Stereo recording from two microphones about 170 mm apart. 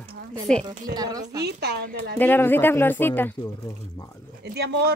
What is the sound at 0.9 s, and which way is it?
Speech, 20° right (ahead or behind).